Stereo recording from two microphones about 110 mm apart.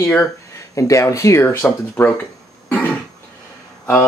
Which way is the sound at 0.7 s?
30° left (ahead or behind).